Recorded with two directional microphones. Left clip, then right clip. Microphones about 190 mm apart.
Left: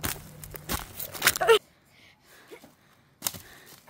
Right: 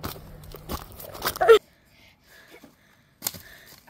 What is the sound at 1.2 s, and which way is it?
Vehicle, 20° left (ahead or behind).